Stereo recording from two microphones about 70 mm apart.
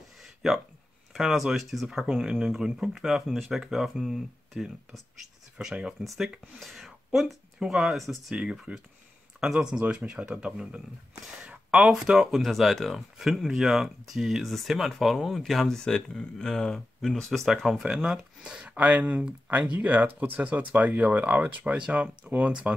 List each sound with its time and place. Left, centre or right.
0.2 s a sound: centre
1.1 s speech: centre
8.4 s speech: centre